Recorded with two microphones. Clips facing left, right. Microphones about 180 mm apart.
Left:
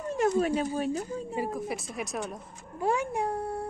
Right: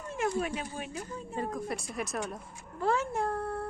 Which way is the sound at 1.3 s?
5° left (ahead or behind).